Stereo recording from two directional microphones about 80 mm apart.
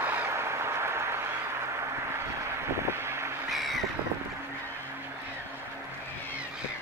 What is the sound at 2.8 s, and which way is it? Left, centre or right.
Vehicle, right.